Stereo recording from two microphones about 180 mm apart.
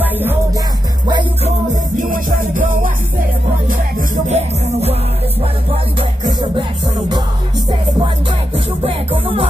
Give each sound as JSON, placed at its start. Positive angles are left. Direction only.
{"t": 0.0, "sound": "music", "side_deg": -10}
{"t": 2.0, "sound": "music", "side_deg": -50}
{"t": 4.3, "sound": "music", "side_deg": -40}
{"t": 5.9, "sound": "music", "side_deg": -25}
{"t": 8.5, "sound": "music", "side_deg": -30}